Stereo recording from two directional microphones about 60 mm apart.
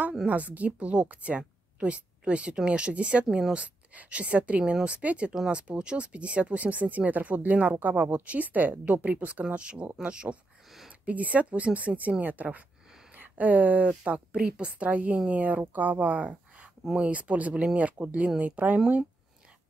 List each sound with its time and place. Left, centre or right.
0.3 s speech: right
3.3 s speech: centre
3.5 s speech: right